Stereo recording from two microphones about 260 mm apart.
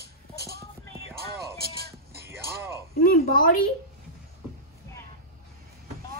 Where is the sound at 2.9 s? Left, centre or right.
Left.